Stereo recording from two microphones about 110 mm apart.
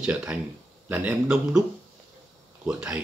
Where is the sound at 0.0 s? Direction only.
10° right (ahead or behind).